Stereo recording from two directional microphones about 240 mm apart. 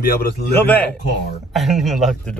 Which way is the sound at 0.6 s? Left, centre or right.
Centre.